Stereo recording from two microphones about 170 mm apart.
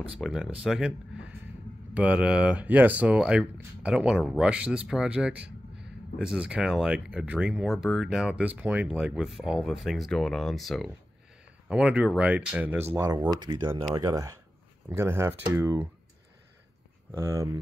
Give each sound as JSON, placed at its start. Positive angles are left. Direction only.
{"t": 0.2, "sound": "speech", "side_deg": -5}
{"t": 17.2, "sound": "speech", "side_deg": -20}